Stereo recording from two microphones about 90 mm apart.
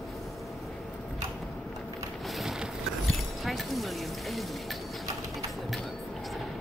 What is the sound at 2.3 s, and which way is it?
Boat, centre (ahead or behind).